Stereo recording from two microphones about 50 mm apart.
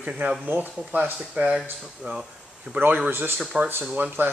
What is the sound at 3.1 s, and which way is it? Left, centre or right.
Speech, right.